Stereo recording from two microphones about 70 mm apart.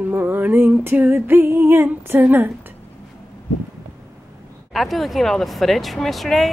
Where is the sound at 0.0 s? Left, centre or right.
Right.